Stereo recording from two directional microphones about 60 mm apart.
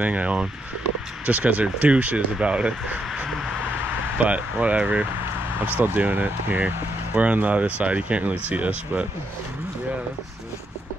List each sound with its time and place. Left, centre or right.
0.0 s speech: right
3.1 s a sound: centre
4.2 s speech: right